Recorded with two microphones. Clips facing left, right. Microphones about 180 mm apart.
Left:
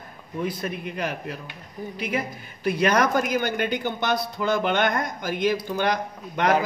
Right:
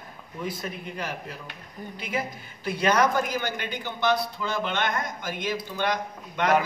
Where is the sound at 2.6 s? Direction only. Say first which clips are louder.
Left 2 dB; 60° left (ahead or behind).